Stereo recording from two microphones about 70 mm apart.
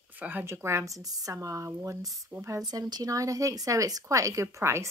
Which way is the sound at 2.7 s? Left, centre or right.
Right.